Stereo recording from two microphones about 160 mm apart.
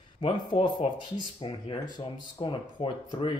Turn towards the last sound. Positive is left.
turn(degrees=30)  # may be behind; listen again after turning